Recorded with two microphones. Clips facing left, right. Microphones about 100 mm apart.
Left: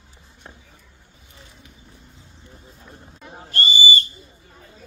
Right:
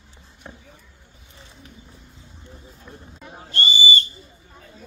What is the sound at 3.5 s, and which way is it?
Owl, 30° right (ahead or behind).